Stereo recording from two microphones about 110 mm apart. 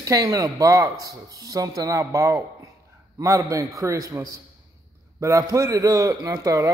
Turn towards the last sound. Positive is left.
turn(degrees=-35)  # may be behind; listen again after turning